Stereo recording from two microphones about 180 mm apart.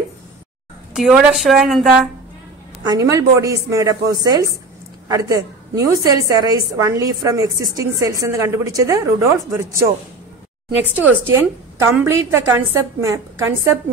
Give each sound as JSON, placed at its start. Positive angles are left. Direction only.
{"t": 0.9, "sound": "a woman's voice", "side_deg": 0}
{"t": 2.9, "sound": "a woman's voice", "side_deg": -20}
{"t": 11.0, "sound": "speech", "side_deg": -10}